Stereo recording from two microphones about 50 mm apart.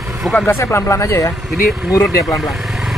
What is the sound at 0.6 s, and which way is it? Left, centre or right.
Speech, left.